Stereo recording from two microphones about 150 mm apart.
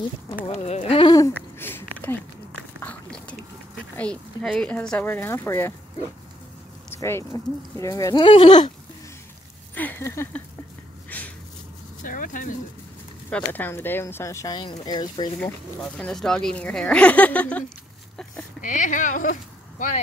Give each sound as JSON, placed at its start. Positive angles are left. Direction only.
{"t": 0.5, "sound": "speech", "side_deg": 45}
{"t": 1.1, "sound": "a sound", "side_deg": 20}
{"t": 2.8, "sound": "biting", "side_deg": 10}
{"t": 3.9, "sound": "speech", "side_deg": 10}
{"t": 6.9, "sound": "speech", "side_deg": 15}
{"t": 9.8, "sound": "speech", "side_deg": 15}
{"t": 11.1, "sound": "a sound", "side_deg": 10}
{"t": 12.0, "sound": "a sound", "side_deg": 65}
{"t": 13.3, "sound": "speech", "side_deg": 10}
{"t": 15.4, "sound": "speech", "side_deg": 5}
{"t": 18.6, "sound": "speech", "side_deg": 55}